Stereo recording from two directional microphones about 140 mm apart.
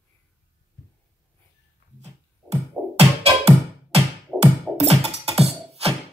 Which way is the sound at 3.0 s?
45° right (ahead or behind).